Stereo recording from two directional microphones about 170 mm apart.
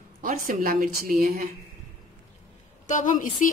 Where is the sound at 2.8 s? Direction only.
50° left (ahead or behind).